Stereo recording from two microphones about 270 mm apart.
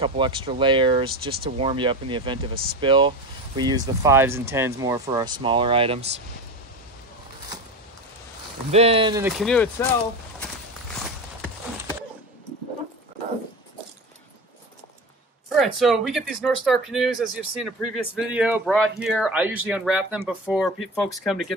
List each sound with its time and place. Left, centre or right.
0.0 s speech: centre
2.5 s speech: right
2.8 s speech: centre
8.7 s speech: right
9.2 s speech: centre
15.5 s speech: centre